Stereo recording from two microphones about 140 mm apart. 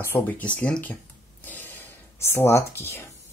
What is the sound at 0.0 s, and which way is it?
Speech, 15° left (ahead or behind).